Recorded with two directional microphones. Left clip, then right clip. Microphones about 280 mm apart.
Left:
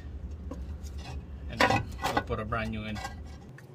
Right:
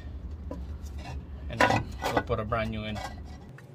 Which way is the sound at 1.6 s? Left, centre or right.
Centre.